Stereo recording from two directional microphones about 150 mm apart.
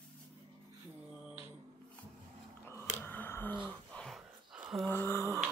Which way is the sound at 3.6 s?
5° left (ahead or behind).